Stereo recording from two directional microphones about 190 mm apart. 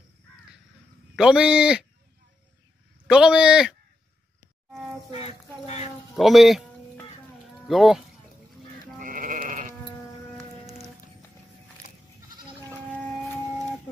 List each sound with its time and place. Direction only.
1.1 s a man's voice: 5° right (ahead or behind)
3.1 s a man's voice: 5° right (ahead or behind)
5.1 s a sound: 30° left (ahead or behind)
6.1 s a man's voice: centre (ahead or behind)
8.9 s sheep: 45° right (ahead or behind)